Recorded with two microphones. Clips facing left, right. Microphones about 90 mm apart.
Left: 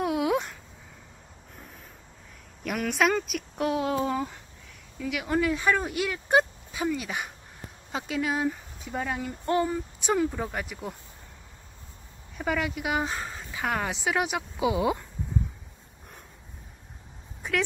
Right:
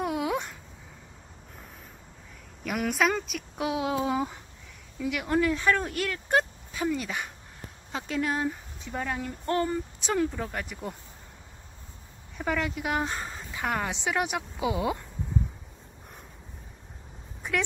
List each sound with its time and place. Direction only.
0.0 s a sound: 10° left (ahead or behind)
2.7 s speech: 15° right (ahead or behind)
3.0 s a woman's voice: centre (ahead or behind)
12.4 s a woman's voice: 5° left (ahead or behind)